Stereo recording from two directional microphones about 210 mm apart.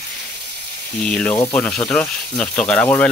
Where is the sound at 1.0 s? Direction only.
5° left (ahead or behind).